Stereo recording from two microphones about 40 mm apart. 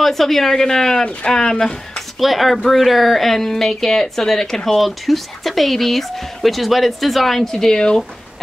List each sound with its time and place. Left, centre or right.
0.0 s speech: centre
2.1 s speech: centre
7.3 s speech: centre